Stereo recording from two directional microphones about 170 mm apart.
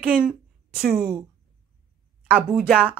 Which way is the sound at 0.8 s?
15° right (ahead or behind).